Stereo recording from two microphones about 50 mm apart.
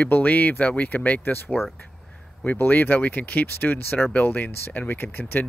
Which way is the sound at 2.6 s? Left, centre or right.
Left.